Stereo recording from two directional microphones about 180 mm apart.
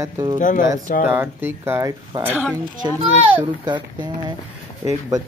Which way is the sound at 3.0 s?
25° right (ahead or behind).